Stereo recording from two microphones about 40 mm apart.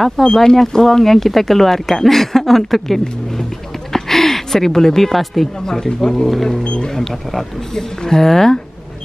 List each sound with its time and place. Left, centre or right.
0.2 s a woman's voice: centre
6.6 s speech: left
6.9 s speech: centre